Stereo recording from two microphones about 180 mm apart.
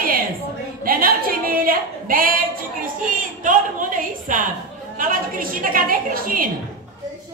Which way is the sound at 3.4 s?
50° right (ahead or behind).